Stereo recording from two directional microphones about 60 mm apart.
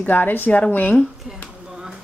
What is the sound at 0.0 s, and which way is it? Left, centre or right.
Speech, left.